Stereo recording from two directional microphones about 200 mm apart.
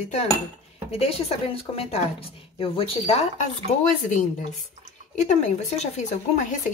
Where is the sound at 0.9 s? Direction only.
30° left (ahead or behind).